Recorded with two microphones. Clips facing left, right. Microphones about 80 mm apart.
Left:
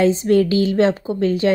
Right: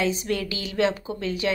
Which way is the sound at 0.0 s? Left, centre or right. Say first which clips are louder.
Left 11 dB; left.